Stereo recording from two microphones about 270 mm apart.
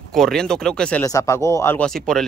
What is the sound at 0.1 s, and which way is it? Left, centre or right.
Speech, centre.